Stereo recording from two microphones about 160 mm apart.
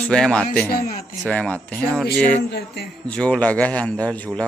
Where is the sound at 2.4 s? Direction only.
90° left.